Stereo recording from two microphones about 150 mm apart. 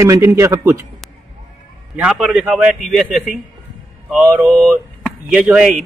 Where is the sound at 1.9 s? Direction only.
5° right (ahead or behind).